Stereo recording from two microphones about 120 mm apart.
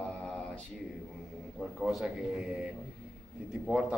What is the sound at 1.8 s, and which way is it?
A man's voice, 5° right (ahead or behind).